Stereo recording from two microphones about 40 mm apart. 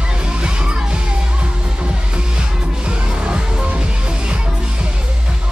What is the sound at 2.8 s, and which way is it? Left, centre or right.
Music, right.